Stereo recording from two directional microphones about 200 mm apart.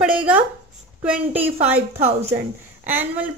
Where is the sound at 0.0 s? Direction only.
5° right (ahead or behind).